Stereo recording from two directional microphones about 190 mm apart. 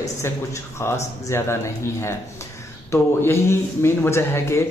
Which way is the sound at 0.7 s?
15° left (ahead or behind).